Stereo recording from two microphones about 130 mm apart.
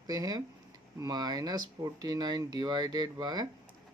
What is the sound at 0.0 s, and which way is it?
Speech, 30° right (ahead or behind).